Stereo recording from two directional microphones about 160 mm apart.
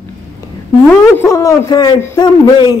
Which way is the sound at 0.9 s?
15° left (ahead or behind).